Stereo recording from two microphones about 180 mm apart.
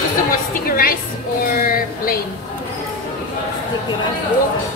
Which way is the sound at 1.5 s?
50° left (ahead or behind).